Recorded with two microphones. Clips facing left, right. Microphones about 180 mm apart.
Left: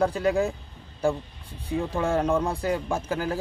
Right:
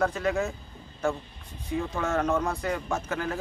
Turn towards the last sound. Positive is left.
turn(degrees=30)  # may be behind; listen again after turning